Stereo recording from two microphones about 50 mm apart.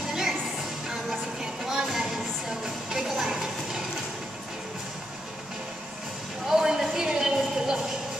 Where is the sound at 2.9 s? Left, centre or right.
Centre.